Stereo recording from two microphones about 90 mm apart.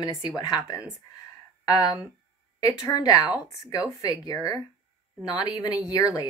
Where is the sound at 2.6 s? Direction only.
45° left (ahead or behind).